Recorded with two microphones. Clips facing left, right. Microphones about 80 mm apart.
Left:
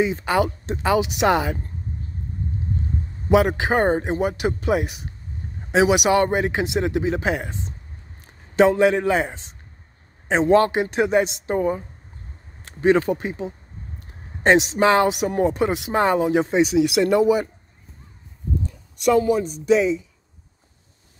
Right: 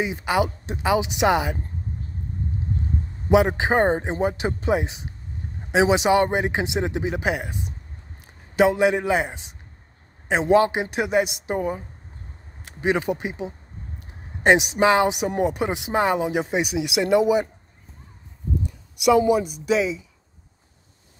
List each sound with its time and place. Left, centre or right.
0.0 s speech: centre
3.3 s speech: right
18.6 s speech: centre